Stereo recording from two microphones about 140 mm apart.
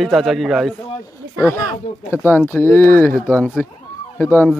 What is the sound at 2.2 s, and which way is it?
Speech, 15° left (ahead or behind).